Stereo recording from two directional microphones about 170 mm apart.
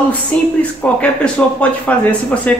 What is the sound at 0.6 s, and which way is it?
A man's voice, 10° left (ahead or behind).